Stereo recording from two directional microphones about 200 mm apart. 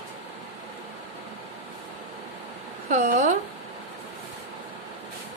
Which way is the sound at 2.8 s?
40° right (ahead or behind).